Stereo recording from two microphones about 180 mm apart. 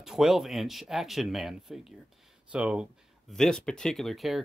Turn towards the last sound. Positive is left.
turn(degrees=0)  # may be behind; listen again after turning